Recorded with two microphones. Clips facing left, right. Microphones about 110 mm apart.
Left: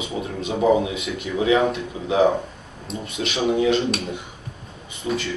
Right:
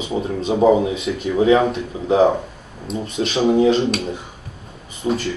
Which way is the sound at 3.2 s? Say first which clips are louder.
Right 5 dB; 35° right (ahead or behind).